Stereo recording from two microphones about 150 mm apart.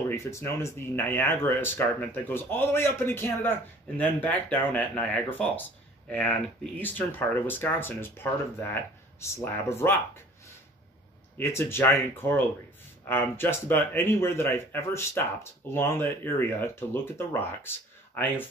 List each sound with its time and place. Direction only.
0.1 s speech: 20° left (ahead or behind)
11.3 s speech: 15° left (ahead or behind)